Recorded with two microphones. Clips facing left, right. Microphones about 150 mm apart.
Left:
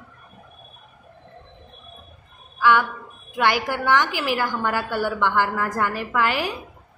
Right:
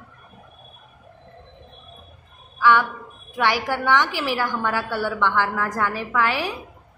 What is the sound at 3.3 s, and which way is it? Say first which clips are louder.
A woman's voice: even; 10° left (ahead or behind).